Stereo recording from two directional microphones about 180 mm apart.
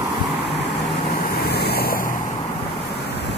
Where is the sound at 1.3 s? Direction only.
60° left (ahead or behind).